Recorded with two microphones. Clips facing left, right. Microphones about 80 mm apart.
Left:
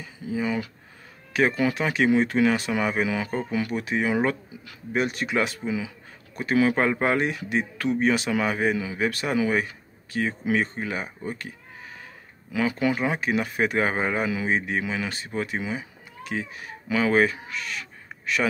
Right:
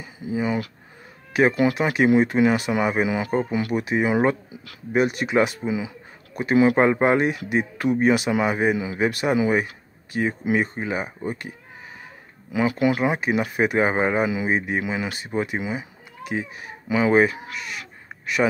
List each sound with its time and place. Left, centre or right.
0.3 s speech: centre
12.5 s speech: centre